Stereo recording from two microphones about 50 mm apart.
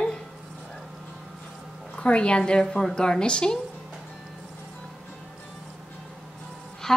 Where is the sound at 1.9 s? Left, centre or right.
Left.